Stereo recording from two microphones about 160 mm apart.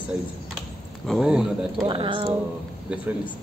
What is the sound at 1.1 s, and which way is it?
Speech, 5° right (ahead or behind).